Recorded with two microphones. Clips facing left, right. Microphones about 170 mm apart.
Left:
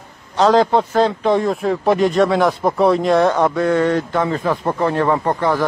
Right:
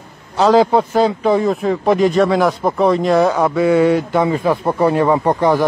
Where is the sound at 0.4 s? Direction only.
5° right (ahead or behind).